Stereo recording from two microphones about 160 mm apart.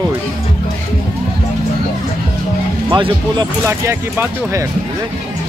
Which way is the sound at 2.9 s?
30° right (ahead or behind).